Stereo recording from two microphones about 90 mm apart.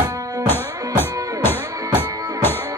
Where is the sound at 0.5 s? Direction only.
25° left (ahead or behind).